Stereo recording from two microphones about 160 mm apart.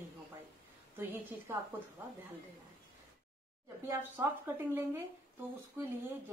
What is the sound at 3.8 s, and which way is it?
A woman's voice, 15° right (ahead or behind).